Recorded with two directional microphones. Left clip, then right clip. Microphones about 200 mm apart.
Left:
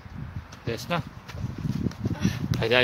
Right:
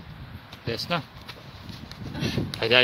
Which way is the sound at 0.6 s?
5° left (ahead or behind).